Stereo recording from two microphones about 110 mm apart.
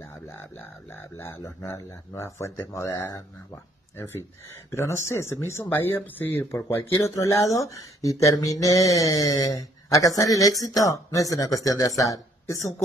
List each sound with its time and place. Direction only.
1.1 s speech: 25° left (ahead or behind)
4.6 s speech: 25° left (ahead or behind)